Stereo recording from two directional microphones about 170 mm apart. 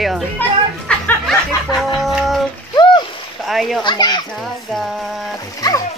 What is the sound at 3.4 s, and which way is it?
Speech, centre (ahead or behind).